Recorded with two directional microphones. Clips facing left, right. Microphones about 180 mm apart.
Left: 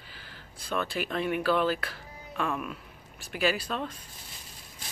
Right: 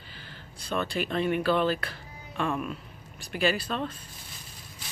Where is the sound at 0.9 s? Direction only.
5° left (ahead or behind).